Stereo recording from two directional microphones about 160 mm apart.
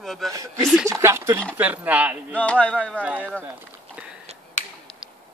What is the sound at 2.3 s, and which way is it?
Music, 10° left (ahead or behind).